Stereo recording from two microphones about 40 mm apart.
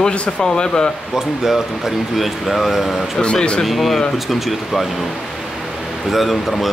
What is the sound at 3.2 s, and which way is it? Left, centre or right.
Speech, left.